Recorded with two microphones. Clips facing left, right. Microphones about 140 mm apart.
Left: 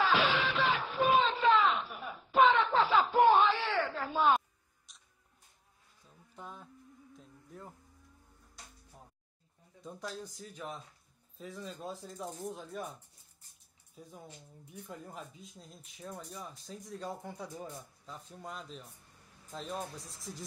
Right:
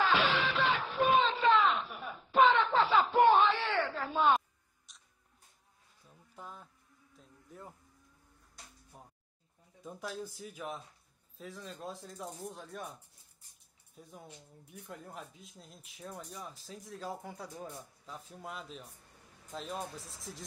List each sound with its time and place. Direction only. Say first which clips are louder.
0.0 s music: even; centre (ahead or behind)
4.9 s tick-tock: right 1 dB; centre (ahead or behind)
6.0 s insect: left 1 dB; 5° right (ahead or behind)
9.8 s speech: right 1 dB; 5° right (ahead or behind)
13.9 s speech: left 1 dB; centre (ahead or behind)